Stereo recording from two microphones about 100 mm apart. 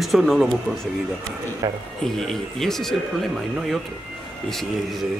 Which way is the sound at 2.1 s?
5° left (ahead or behind).